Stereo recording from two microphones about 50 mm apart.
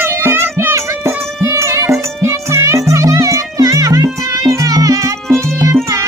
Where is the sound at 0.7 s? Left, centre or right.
Right.